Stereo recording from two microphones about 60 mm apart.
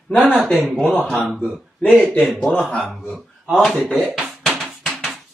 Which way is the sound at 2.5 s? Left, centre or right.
Left.